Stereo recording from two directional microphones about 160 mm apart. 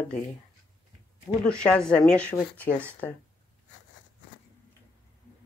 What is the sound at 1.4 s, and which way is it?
A woman's voice, 5° left (ahead or behind).